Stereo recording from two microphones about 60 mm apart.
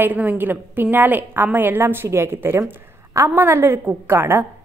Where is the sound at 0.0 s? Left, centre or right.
Right.